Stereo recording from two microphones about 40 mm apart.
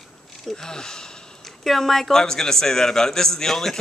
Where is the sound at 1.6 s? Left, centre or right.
Centre.